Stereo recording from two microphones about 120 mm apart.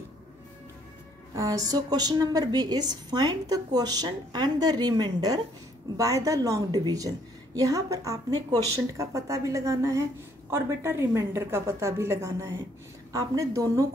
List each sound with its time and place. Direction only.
1.3 s a woman's voice: 30° right (ahead or behind)